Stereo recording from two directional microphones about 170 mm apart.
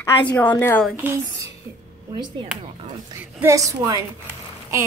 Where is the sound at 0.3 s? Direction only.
10° left (ahead or behind).